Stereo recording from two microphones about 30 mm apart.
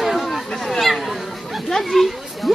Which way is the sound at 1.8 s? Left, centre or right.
Centre.